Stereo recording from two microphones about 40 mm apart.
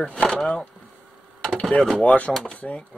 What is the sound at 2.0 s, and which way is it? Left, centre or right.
Speech, left.